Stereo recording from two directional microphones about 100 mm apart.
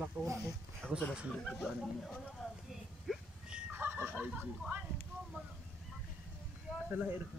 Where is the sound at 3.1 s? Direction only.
10° right (ahead or behind).